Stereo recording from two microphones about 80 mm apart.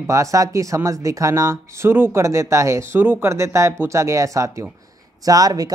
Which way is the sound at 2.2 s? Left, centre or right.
Right.